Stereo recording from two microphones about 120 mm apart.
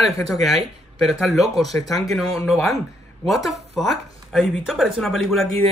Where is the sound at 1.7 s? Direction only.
15° left (ahead or behind).